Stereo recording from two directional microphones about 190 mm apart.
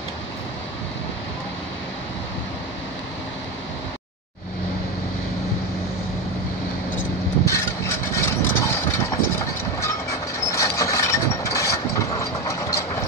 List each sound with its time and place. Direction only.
7.0 s vehicle: 15° left (ahead or behind)